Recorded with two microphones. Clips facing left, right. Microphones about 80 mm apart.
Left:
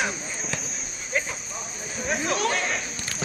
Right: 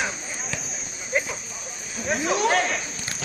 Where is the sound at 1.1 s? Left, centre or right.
Centre.